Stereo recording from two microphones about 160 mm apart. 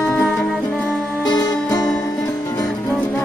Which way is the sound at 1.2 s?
25° left (ahead or behind).